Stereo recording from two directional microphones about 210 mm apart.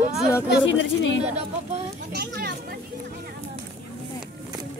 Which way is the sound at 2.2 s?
50° right (ahead or behind).